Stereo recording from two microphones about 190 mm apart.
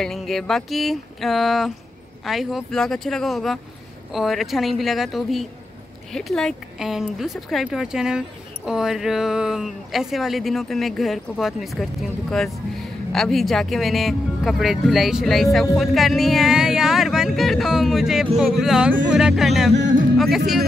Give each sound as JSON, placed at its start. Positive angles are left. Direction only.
{"t": 0.0, "sound": "speech", "side_deg": 0}
{"t": 19.7, "sound": "speech", "side_deg": -70}
{"t": 20.2, "sound": "speech", "side_deg": 0}